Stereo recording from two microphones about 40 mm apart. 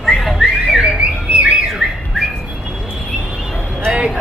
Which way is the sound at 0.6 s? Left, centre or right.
Centre.